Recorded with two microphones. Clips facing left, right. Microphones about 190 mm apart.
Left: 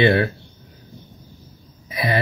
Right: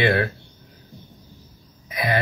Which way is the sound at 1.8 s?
30° left (ahead or behind).